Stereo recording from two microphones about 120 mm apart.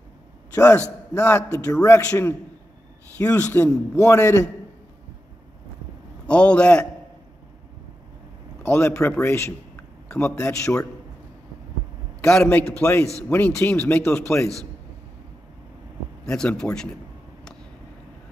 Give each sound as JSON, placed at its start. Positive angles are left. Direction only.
{"t": 1.1, "sound": "a man's voice", "side_deg": 15}
{"t": 1.7, "sound": "a man's voice", "side_deg": 30}
{"t": 6.2, "sound": "a man's voice", "side_deg": 10}
{"t": 8.6, "sound": "a man's voice", "side_deg": 20}
{"t": 10.0, "sound": "a sound", "side_deg": 10}
{"t": 10.4, "sound": "a man's voice", "side_deg": 15}
{"t": 12.4, "sound": "a man's voice", "side_deg": 15}
{"t": 16.3, "sound": "a man's voice", "side_deg": 5}